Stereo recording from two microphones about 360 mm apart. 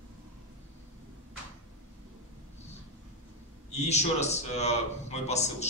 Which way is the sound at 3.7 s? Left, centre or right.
Centre.